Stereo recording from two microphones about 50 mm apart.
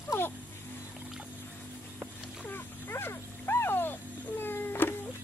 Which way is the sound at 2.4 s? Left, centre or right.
Left.